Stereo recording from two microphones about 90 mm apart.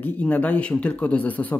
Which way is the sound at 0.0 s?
15° left (ahead or behind).